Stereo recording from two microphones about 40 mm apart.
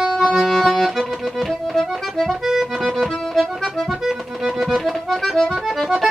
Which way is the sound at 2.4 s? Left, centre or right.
Centre.